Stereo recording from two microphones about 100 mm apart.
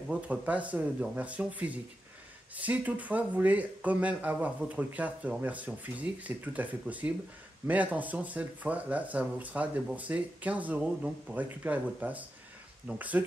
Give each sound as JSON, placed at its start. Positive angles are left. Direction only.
{"t": 0.1, "sound": "speech", "side_deg": -15}